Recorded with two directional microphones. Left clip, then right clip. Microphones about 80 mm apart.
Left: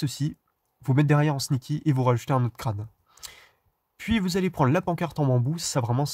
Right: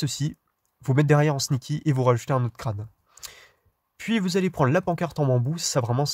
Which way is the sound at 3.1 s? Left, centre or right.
Centre.